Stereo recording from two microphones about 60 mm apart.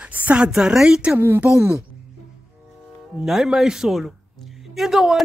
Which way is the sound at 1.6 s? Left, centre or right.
Right.